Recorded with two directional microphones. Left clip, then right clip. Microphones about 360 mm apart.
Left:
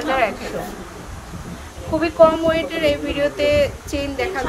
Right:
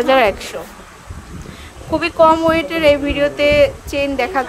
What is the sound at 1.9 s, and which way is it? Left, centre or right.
A woman's voice, centre.